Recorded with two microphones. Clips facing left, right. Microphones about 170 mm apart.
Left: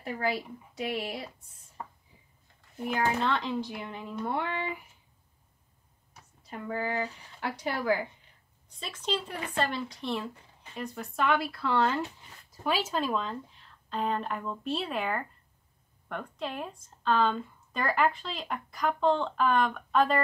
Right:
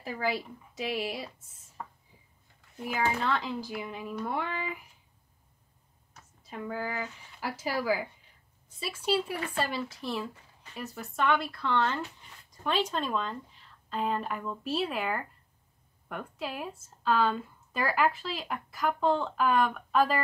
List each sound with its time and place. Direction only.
0.0 s speech: centre (ahead or behind)
2.8 s speech: centre (ahead or behind)
6.4 s speech: centre (ahead or behind)